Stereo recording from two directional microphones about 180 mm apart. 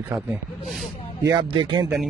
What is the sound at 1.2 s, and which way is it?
Speech, 25° right (ahead or behind).